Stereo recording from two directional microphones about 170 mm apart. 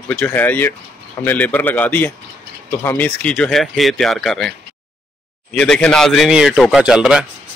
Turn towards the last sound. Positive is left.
turn(degrees=-5)  # may be behind; listen again after turning